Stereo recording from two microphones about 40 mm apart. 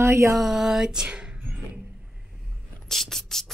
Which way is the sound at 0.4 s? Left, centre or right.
Centre.